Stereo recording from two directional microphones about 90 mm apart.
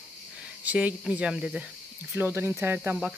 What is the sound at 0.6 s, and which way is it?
Speech, 15° right (ahead or behind).